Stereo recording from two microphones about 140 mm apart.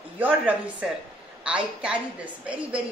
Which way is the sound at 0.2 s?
10° right (ahead or behind).